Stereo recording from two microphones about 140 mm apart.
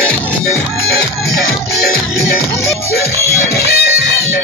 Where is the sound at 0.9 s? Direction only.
90° left.